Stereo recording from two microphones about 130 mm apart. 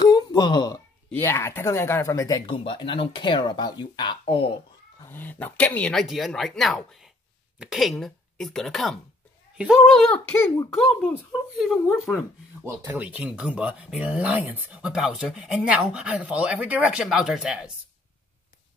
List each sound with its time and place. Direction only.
0.0 s a sound: 35° left (ahead or behind)
1.1 s speech: 20° left (ahead or behind)
2.4 s speech: 40° left (ahead or behind)
5.0 s speech: 15° left (ahead or behind)
10.3 s speech: 20° left (ahead or behind)
11.6 s speech: centre (ahead or behind)
12.6 s speech: 15° right (ahead or behind)